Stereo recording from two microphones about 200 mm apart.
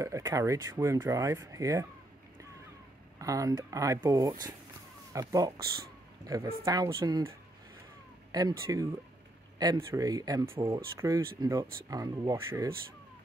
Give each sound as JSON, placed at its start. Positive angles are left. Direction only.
{"t": 0.0, "sound": "speech", "side_deg": -15}
{"t": 3.2, "sound": "speech", "side_deg": -15}